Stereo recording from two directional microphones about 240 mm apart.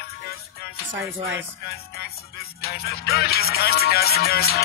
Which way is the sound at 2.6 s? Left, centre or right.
Left.